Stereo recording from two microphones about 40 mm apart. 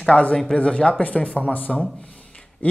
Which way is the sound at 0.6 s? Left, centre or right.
Left.